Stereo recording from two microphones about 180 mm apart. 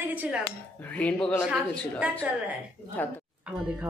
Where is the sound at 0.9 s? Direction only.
5° left (ahead or behind).